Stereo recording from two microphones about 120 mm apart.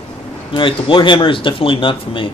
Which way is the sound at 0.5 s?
45° left (ahead or behind).